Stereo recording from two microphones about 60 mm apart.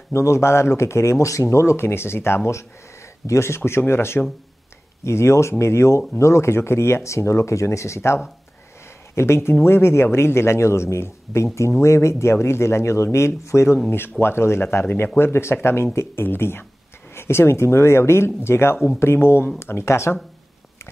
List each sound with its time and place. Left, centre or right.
0.1 s speech: left
13.8 s speech: left